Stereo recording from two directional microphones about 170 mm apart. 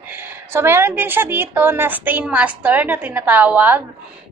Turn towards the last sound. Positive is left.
turn(degrees=-10)  # may be behind; listen again after turning